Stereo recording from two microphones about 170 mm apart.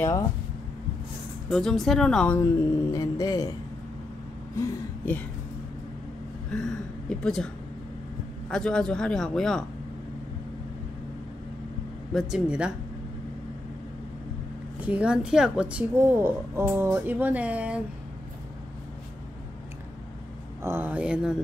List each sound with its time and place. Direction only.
1.5 s a man's voice: 5° left (ahead or behind)
2.9 s speech: 20° left (ahead or behind)
4.6 s a sound: 10° left (ahead or behind)
6.5 s a man's voice: 5° left (ahead or behind)
12.1 s a man's voice: centre (ahead or behind)
14.8 s a woman's voice: 5° right (ahead or behind)
20.6 s a woman's voice: 10° right (ahead or behind)